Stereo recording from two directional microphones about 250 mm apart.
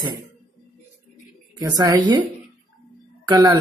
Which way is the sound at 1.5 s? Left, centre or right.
Centre.